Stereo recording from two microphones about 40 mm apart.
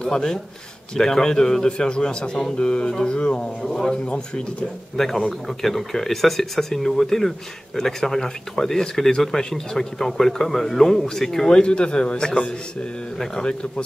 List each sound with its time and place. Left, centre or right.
0.0 s speech: centre
3.6 s speech: centre
3.9 s speech: left
4.9 s speech: centre; by 13.8 s left